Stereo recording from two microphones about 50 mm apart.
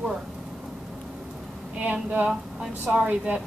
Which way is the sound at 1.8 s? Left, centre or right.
Right.